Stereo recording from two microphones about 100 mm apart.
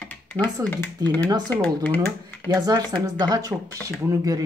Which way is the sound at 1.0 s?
40° right (ahead or behind).